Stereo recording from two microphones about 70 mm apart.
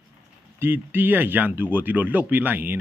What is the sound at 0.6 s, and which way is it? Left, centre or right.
Speech, right.